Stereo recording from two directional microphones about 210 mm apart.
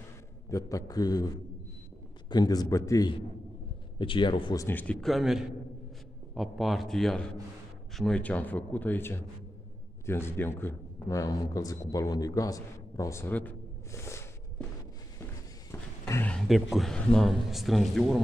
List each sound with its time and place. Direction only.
0.5 s a man's voice: 15° left (ahead or behind)
4.6 s a man's voice: 5° left (ahead or behind)
15.7 s speech: 10° left (ahead or behind)